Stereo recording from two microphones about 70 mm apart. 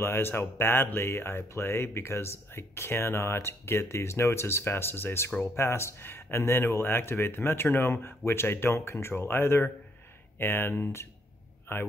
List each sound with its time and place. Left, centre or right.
0.0 s speech: left